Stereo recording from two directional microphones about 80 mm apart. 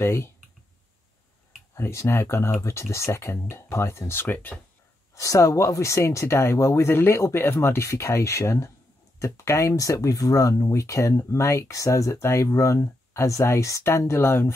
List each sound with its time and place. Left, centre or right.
0.0 s speech: left
1.8 s speech: left
5.1 s speech: left